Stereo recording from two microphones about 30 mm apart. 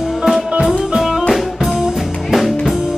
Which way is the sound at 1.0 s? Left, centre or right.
Centre.